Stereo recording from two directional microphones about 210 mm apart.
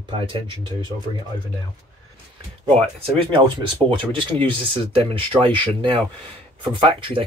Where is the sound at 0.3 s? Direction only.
20° right (ahead or behind).